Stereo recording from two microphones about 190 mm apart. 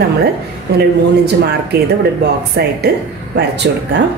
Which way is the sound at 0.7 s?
60° right (ahead or behind).